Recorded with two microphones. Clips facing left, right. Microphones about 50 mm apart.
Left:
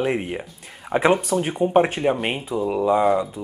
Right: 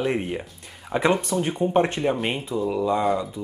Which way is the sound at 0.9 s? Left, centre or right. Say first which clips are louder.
Left 3 dB; centre.